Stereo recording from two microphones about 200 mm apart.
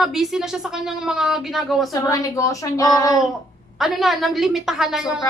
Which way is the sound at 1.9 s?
15° left (ahead or behind).